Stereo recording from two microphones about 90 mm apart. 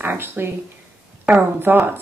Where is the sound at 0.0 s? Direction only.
20° right (ahead or behind).